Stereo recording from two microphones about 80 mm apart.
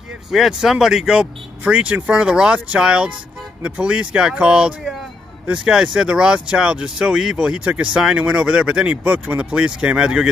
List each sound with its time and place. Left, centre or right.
0.3 s speech: centre